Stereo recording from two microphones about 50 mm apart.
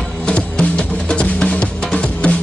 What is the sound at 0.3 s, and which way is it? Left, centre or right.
Music, left.